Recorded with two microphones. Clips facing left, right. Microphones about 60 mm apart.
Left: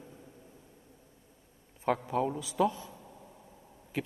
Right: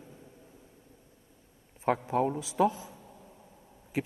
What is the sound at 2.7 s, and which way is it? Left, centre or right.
Speech, right.